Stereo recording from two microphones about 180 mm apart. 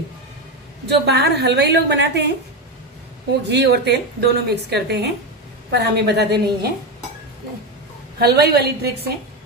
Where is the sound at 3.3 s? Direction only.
70° right (ahead or behind).